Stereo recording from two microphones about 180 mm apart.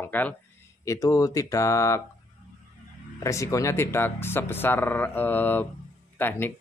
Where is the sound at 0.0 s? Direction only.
10° left (ahead or behind).